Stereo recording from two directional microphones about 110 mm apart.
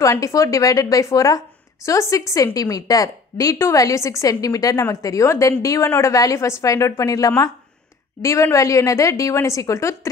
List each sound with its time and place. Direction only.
0.0 s a woman's voice: 30° left (ahead or behind)